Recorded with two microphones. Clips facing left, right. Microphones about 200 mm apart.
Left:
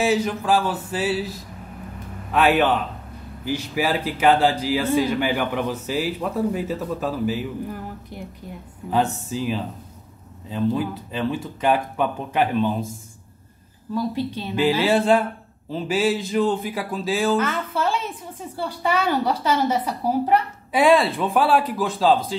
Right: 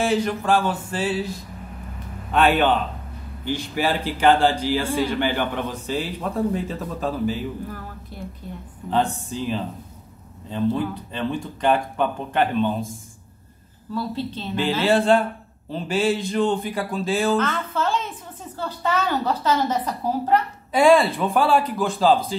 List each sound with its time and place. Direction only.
0.0 s speech: 5° left (ahead or behind)
2.3 s speech: 5° left (ahead or behind)
8.1 s speech: 15° left (ahead or behind)
8.9 s speech: 5° left (ahead or behind)
13.9 s speech: 15° left (ahead or behind)